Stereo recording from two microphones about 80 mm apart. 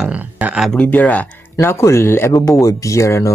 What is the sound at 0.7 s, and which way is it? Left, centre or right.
Speech, centre.